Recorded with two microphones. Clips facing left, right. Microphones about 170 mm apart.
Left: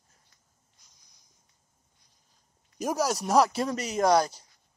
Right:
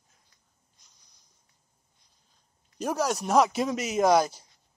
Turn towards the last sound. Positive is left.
turn(degrees=-5)  # may be behind; listen again after turning